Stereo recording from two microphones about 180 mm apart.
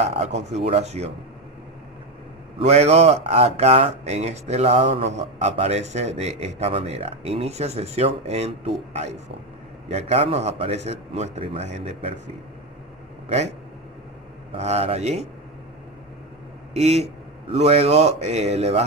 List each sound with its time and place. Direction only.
0.0 s speech: 35° right (ahead or behind)
2.6 s speech: 35° right (ahead or behind)
13.3 s speech: 35° right (ahead or behind)
16.7 s speech: 35° right (ahead or behind)